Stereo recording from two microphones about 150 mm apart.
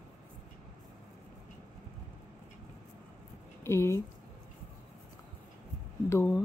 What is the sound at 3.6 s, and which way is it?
Speech, 20° left (ahead or behind).